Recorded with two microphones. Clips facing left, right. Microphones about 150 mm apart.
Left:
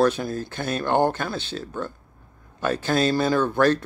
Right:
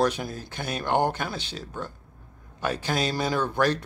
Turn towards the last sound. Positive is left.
turn(degrees=-15)  # may be behind; listen again after turning